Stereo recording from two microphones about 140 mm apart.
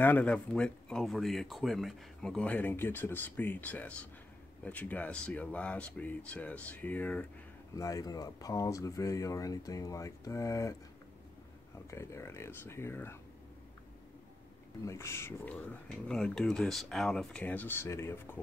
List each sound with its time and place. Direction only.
0.0 s speech: 10° left (ahead or behind)
7.7 s speech: 25° left (ahead or behind)
11.9 s speech: 20° left (ahead or behind)
14.9 s speech: 20° left (ahead or behind)